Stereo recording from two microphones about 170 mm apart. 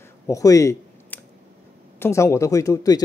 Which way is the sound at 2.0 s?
15° left (ahead or behind).